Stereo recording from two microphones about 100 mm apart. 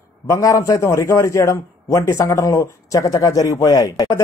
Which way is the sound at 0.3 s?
35° left (ahead or behind).